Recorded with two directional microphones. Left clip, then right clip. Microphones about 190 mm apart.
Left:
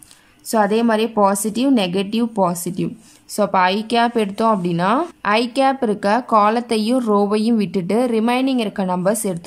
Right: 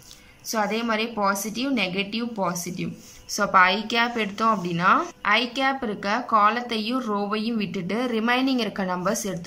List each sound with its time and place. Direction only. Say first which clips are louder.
0.5 s a woman's voice: left 8 dB; 30° left (ahead or behind)